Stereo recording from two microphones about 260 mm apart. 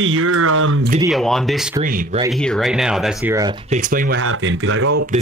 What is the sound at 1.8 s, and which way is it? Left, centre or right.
Speech, right.